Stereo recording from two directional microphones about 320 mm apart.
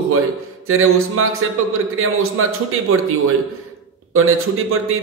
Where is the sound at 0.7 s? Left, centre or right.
Right.